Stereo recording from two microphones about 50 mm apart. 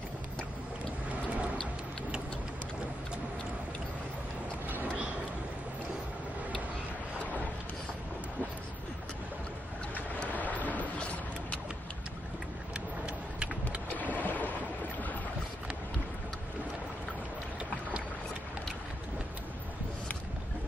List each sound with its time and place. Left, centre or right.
10.3 s boat: left
12.7 s vehicle: right
13.8 s boat: left